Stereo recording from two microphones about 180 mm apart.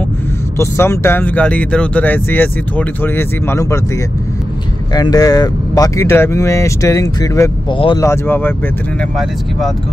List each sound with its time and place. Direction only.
0.6 s speech: 15° left (ahead or behind)
4.9 s speech: 20° left (ahead or behind)
7.7 s speech: 30° left (ahead or behind)
8.0 s speech: 15° left (ahead or behind)